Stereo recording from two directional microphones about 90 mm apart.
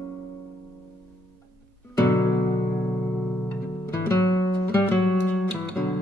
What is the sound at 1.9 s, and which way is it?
Music, 30° left (ahead or behind).